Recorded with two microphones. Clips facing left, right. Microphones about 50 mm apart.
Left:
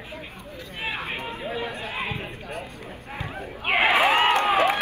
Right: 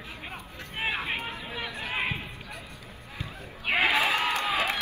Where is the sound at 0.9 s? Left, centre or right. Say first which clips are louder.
Even; centre.